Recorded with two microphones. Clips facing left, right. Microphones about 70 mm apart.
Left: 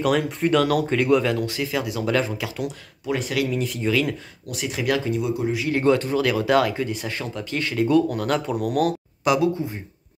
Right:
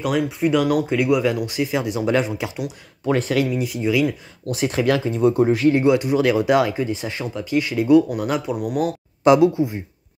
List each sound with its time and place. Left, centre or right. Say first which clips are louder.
0.0 s speech: right 1 dB; centre; by 2.6 s right
3.1 s speech: right 5 dB; right
3.4 s speech: right 2 dB; centre
4.6 s speech: right 4 dB; right
5.8 s speech: right 2 dB; centre
9.2 s speech: right 6 dB; right